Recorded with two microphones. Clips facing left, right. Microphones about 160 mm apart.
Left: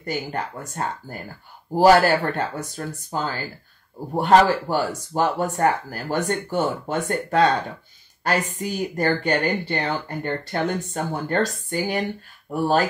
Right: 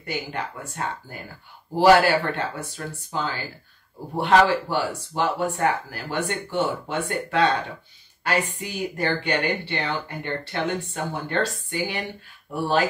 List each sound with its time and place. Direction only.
0.0 s speech: 45° left (ahead or behind)